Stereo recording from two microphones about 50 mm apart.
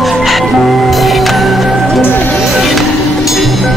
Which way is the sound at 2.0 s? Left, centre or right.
Left.